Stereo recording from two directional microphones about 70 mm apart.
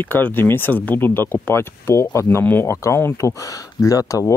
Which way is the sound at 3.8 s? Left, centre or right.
Left.